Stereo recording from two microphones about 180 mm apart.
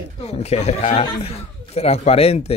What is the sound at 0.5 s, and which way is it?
Speech, 35° left (ahead or behind).